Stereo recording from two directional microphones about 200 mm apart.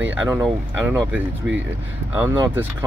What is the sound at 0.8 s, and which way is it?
Speech, 10° right (ahead or behind).